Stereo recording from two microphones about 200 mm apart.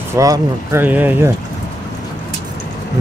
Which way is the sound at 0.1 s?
15° right (ahead or behind).